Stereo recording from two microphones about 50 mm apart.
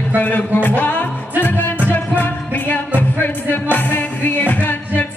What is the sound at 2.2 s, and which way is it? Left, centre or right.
Music, left.